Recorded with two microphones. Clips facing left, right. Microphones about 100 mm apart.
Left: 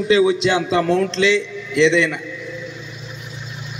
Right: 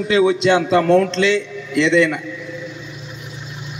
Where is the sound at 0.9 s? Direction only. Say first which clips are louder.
Right 1 dB; 45° right (ahead or behind).